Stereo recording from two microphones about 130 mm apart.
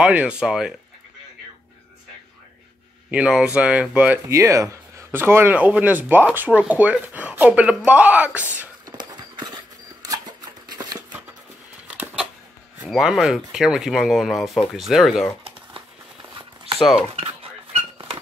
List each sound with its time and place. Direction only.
0.0 s speech: 10° right (ahead or behind)
3.1 s speech: 10° right (ahead or behind)
4.3 s speech: 25° right (ahead or behind)
8.8 s clip-clop: 35° right (ahead or behind)
10.7 s shuffling cards: 30° right (ahead or behind)
12.8 s speech: 5° right (ahead or behind)
16.7 s speech: centre (ahead or behind)
17.1 s a sound: 45° right (ahead or behind)